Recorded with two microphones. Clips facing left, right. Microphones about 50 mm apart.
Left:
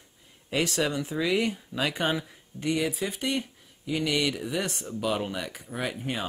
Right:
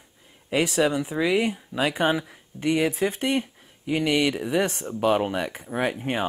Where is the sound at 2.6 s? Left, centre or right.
Right.